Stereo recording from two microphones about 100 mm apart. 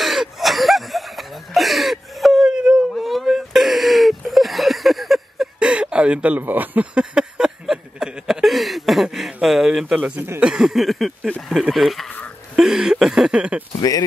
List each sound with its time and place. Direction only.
0.0 s chuckle: centre (ahead or behind)
3.0 s whimper: centre (ahead or behind)
10.4 s a sound: 5° right (ahead or behind)
13.7 s speech: 40° left (ahead or behind)